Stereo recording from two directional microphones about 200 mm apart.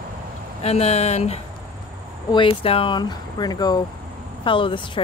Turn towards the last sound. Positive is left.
turn(degrees=25)  # may be behind; listen again after turning